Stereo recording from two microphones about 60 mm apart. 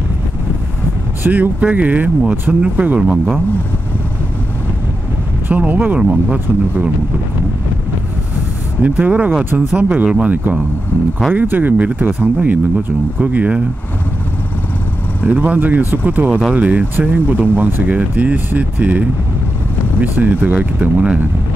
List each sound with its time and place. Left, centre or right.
1.2 s speech: right
5.5 s speech: right
5.9 s speech: centre
8.8 s speech: right
10.3 s speech: right
15.2 s speech: right